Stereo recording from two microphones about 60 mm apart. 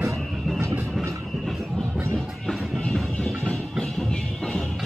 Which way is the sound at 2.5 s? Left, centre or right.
Centre.